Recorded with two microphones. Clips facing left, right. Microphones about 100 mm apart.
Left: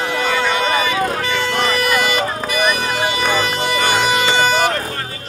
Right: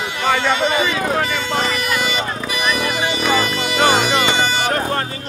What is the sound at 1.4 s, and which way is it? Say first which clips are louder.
Music: left 2 dB; 60° left (ahead or behind).